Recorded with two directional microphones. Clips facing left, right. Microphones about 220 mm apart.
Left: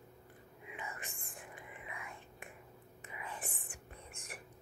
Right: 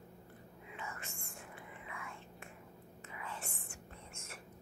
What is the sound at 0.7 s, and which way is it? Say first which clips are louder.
Whispering: even; 15° left (ahead or behind).